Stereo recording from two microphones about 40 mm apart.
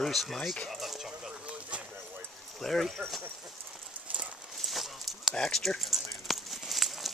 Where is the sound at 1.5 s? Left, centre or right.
Right.